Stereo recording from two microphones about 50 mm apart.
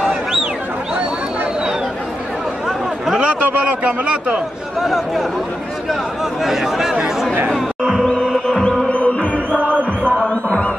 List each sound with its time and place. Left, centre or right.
0.0 s a sound: centre
3.8 s a man's voice: right
4.8 s speech: centre
6.4 s speech: centre
8.0 s music: centre
8.8 s music: left
9.6 s music: right
10.2 s music: left